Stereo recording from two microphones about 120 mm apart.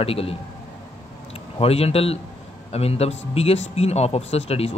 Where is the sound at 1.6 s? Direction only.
55° left (ahead or behind).